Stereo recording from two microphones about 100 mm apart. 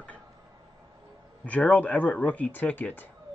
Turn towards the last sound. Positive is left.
turn(degrees=20)  # may be behind; listen again after turning